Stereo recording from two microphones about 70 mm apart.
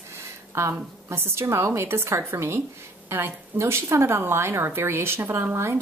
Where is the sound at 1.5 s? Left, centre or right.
Right.